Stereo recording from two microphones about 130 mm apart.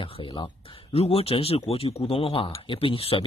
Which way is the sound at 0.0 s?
40° left (ahead or behind).